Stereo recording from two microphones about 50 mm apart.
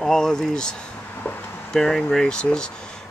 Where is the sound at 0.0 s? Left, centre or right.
Centre.